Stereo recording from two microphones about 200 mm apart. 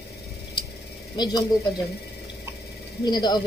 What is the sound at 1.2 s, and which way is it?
Speech, 20° left (ahead or behind).